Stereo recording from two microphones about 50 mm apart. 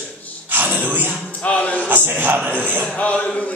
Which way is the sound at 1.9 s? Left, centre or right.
Right.